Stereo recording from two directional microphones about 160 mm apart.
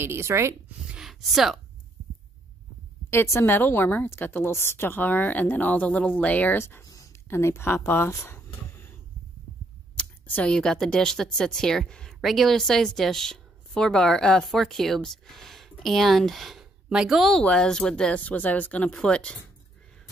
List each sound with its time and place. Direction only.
0.0 s speech: 15° right (ahead or behind)
0.9 s a sound: centre (ahead or behind)
3.1 s a woman's voice: 15° left (ahead or behind)
9.9 s speech: 10° left (ahead or behind)